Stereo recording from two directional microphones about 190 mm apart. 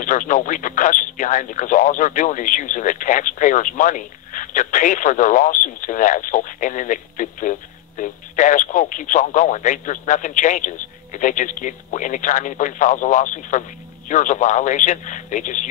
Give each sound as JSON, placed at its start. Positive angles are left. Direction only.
{"t": 0.0, "sound": "speech", "side_deg": 45}